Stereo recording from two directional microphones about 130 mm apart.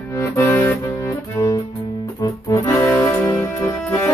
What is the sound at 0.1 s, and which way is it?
Music, 20° left (ahead or behind).